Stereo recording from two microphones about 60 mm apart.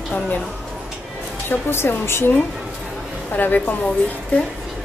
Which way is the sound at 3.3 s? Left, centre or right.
Left.